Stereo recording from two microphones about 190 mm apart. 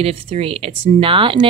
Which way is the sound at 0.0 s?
30° right (ahead or behind).